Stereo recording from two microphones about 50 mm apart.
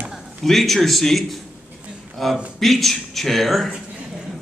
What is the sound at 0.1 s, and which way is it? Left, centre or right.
A man's voice, centre.